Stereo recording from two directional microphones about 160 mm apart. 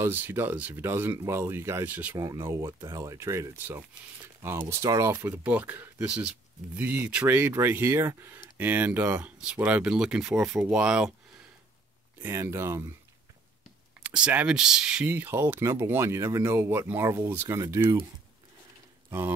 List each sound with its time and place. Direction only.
0.0 s speech: 15° right (ahead or behind)
12.2 s speech: 15° right (ahead or behind)
14.0 s speech: 5° right (ahead or behind)